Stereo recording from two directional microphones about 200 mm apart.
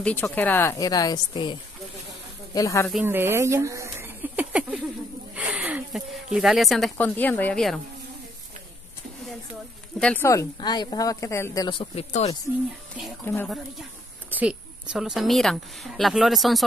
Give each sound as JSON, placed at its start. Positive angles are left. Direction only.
{"t": 0.0, "sound": "speech", "side_deg": 10}
{"t": 2.9, "sound": "a sound", "side_deg": -10}
{"t": 6.3, "sound": "a woman's voice", "side_deg": 0}
{"t": 9.9, "sound": "speech", "side_deg": 5}
{"t": 13.2, "sound": "speech", "side_deg": 10}
{"t": 14.3, "sound": "a woman's voice", "side_deg": -5}